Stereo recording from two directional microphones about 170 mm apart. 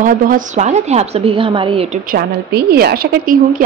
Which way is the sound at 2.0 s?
65° right (ahead or behind).